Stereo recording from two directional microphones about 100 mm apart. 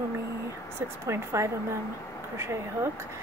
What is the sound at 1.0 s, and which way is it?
A woman's voice, 30° right (ahead or behind).